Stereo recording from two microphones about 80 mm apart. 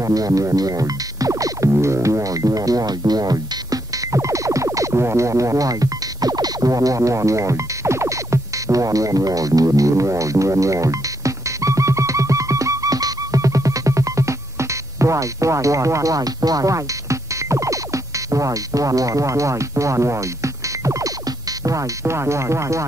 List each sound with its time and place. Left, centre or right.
0.0 s music: right
1.7 s music: right
21.6 s speech: right